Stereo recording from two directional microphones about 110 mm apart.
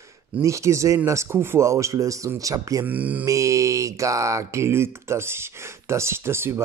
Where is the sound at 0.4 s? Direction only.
25° right (ahead or behind).